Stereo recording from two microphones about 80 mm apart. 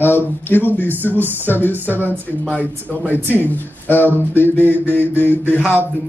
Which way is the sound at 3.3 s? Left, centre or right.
Left.